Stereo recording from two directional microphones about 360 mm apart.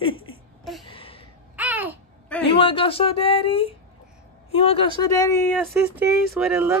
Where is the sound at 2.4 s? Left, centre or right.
Centre.